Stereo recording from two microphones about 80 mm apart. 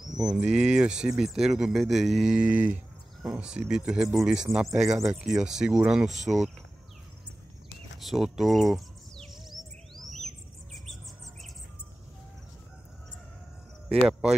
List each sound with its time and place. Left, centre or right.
0.0 s speech: centre
2.3 s speech: centre
8.0 s speech: centre
9.3 s music: centre